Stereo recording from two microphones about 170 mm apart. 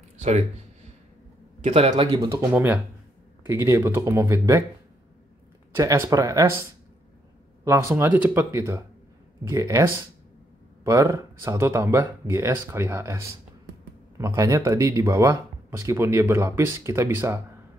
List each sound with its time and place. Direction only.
0.2 s speech: 40° right (ahead or behind)
1.6 s a man's voice: 35° right (ahead or behind)
2.0 s speech: 25° right (ahead or behind)
5.8 s speech: 20° right (ahead or behind)
7.6 s speech: 15° right (ahead or behind)